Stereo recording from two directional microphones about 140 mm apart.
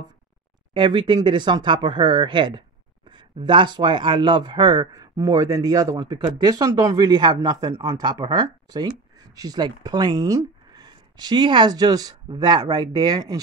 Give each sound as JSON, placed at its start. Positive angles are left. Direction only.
{"t": 0.7, "sound": "speech", "side_deg": -35}